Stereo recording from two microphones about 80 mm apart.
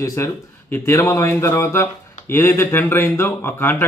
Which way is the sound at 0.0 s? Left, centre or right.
Left.